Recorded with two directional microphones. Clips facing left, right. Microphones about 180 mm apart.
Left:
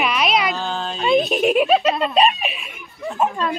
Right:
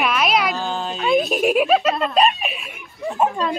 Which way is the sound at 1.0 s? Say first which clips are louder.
Left 1 dB; centre (ahead or behind).